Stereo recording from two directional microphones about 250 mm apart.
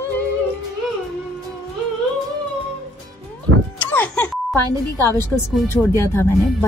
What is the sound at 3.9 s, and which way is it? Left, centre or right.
Speech, centre.